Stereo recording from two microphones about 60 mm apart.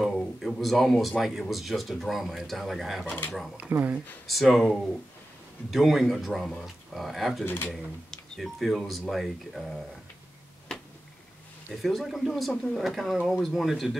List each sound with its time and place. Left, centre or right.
0.0 s a sound: centre
1.5 s speech: centre
3.7 s speech: right
4.3 s speech: centre
7.4 s speech: left
7.7 s speech: centre
11.7 s speech: centre